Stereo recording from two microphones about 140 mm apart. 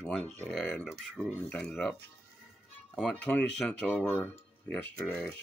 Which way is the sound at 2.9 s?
5° left (ahead or behind).